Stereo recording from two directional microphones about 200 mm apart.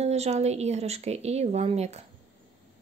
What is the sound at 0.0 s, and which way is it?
Speech, 35° right (ahead or behind).